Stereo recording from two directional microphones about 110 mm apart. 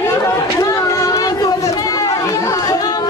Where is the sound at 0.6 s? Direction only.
30° left (ahead or behind).